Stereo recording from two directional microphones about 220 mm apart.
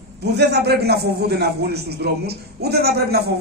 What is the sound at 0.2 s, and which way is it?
A man's voice, 50° right (ahead or behind).